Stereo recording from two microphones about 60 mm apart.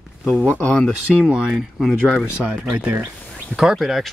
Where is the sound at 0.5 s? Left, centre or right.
Left.